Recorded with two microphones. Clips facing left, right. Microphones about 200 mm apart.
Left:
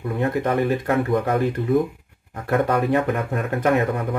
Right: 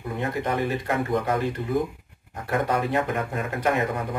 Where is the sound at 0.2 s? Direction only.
55° left (ahead or behind).